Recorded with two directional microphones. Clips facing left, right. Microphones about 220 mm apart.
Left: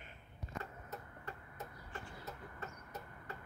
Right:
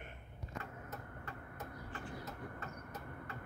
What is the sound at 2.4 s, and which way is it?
Train, 55° right (ahead or behind).